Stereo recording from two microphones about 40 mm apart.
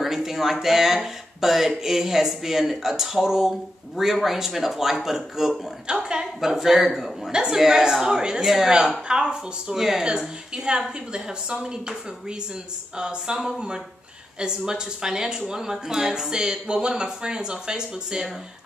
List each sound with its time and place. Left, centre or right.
0.0 s a woman's voice: centre
5.9 s a woman's voice: right